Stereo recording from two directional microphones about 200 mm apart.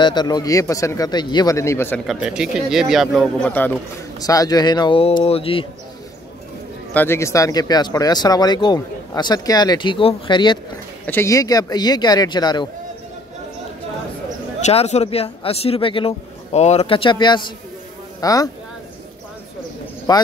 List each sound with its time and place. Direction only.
0.0 s a man's voice: 20° left (ahead or behind)
2.0 s speech: 5° right (ahead or behind)
4.2 s speech: 20° left (ahead or behind)
6.9 s speech: 10° left (ahead or behind)
14.6 s a man's voice: 30° left (ahead or behind)
20.1 s speech: 20° left (ahead or behind)